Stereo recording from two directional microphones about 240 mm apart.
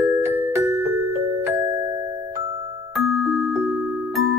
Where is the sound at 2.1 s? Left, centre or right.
Right.